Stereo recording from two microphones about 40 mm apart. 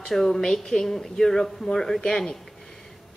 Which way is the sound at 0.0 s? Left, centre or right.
Centre.